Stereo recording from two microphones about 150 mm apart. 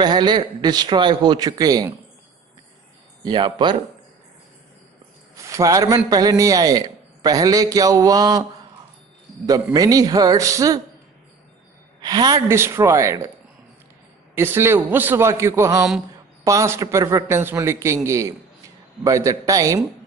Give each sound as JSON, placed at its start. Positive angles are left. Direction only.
{"t": 0.0, "sound": "a man's voice", "side_deg": -30}
{"t": 3.3, "sound": "speech", "side_deg": -30}
{"t": 5.4, "sound": "a man's voice", "side_deg": -20}
{"t": 9.5, "sound": "a man's voice", "side_deg": -25}
{"t": 12.0, "sound": "a man's voice", "side_deg": -25}
{"t": 14.3, "sound": "a man's voice", "side_deg": -15}